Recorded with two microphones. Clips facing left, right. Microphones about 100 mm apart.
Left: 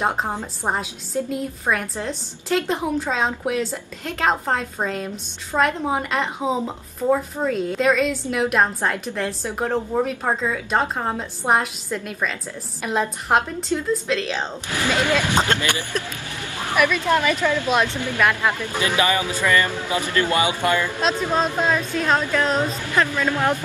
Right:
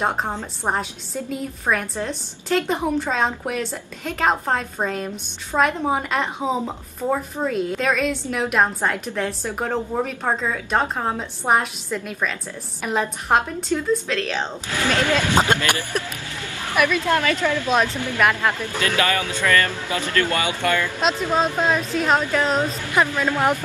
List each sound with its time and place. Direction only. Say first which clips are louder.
0.3 s speech: even; 15° left (ahead or behind)
0.7 s a woman's voice: left 1 dB; centre (ahead or behind)
14.7 s speech: even; 15° left (ahead or behind)
15.3 s speech: right 2 dB; 15° right (ahead or behind)
17.1 s a woman's voice: left 1 dB; 15° left (ahead or behind)
21.3 s a woman's voice: right 1 dB; 10° right (ahead or behind)
22.9 s speech: right 1 dB; 15° right (ahead or behind)